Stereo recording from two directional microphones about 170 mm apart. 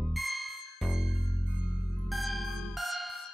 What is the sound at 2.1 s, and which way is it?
Music, centre (ahead or behind).